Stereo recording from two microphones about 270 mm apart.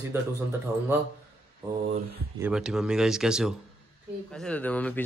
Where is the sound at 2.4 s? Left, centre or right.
Centre.